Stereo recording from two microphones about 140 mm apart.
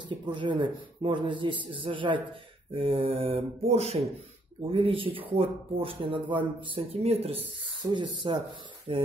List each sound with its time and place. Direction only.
0.3 s speech: 35° right (ahead or behind)